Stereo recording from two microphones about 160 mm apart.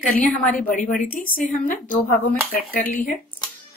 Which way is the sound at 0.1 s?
60° left (ahead or behind).